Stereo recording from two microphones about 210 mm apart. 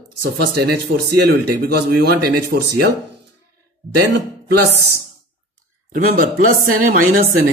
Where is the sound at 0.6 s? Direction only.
50° right (ahead or behind).